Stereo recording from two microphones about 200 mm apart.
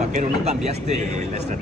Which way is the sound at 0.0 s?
35° right (ahead or behind).